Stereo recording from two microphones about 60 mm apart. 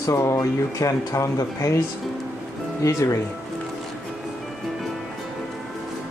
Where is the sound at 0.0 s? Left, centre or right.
Left.